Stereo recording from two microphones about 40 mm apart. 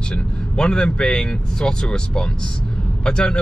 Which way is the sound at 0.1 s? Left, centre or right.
Centre.